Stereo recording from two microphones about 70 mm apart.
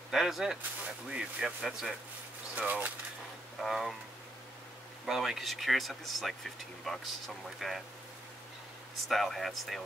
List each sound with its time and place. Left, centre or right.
0.1 s speech: centre
2.5 s speech: right
3.6 s speech: centre
5.0 s speech: centre
9.0 s speech: centre